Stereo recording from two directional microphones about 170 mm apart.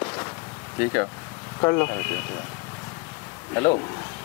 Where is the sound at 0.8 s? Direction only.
15° left (ahead or behind).